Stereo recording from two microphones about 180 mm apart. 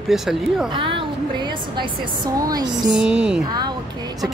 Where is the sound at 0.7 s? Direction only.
30° right (ahead or behind).